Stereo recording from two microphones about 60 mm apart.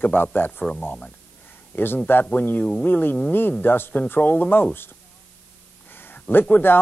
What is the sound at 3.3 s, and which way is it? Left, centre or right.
Speech, left.